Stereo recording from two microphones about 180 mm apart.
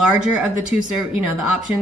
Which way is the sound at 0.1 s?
5° right (ahead or behind).